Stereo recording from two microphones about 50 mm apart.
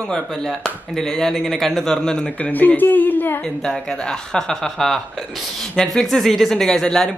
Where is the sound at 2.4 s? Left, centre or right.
Left.